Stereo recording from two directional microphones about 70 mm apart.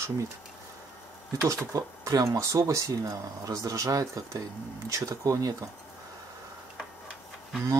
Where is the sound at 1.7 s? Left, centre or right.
Right.